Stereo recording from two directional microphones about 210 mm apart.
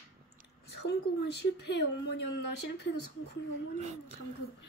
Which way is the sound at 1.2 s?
55° left (ahead or behind).